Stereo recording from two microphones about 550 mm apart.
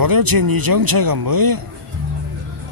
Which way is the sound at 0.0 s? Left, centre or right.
Right.